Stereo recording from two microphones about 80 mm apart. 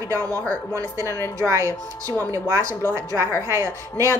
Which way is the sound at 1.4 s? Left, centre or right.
Right.